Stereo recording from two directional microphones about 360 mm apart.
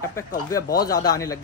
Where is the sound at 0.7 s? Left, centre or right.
Left.